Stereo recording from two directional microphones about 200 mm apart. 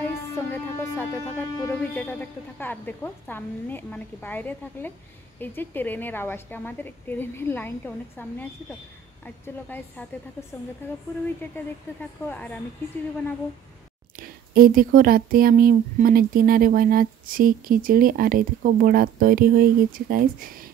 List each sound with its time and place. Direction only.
0.5 s speech: 10° left (ahead or behind)
14.1 s speech: 45° right (ahead or behind)